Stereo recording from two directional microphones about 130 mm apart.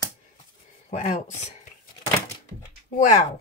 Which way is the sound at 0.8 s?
65° left (ahead or behind).